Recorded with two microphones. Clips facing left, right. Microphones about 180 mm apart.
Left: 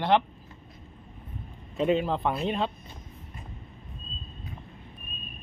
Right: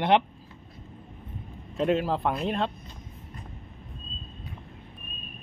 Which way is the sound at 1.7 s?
Centre (ahead or behind).